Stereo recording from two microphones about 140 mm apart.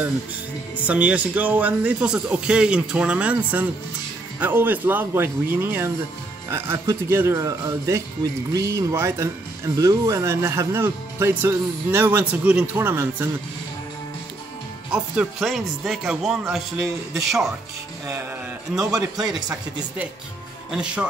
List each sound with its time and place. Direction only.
0.8 s a man's voice: 10° right (ahead or behind)
14.9 s speech: 5° right (ahead or behind)
18.7 s a man's voice: 10° right (ahead or behind)
20.7 s a man's voice: 10° right (ahead or behind)